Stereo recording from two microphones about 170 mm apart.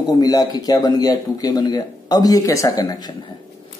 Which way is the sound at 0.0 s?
20° left (ahead or behind).